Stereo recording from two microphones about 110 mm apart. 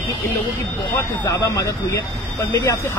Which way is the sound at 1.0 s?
30° left (ahead or behind).